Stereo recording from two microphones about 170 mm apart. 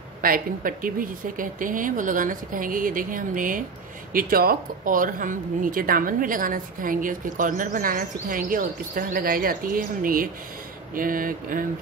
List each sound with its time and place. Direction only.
0.2 s speech: 55° right (ahead or behind)